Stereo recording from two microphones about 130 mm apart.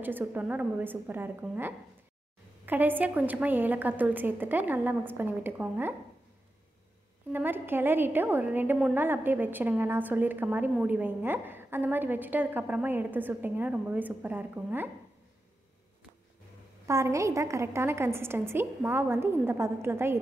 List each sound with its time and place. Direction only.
0.0 s a woman's voice: 15° right (ahead or behind)
7.3 s a woman's voice: 15° right (ahead or behind)
16.8 s a woman's voice: 25° right (ahead or behind)